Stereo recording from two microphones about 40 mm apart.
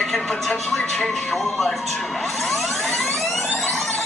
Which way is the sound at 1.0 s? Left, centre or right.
Centre.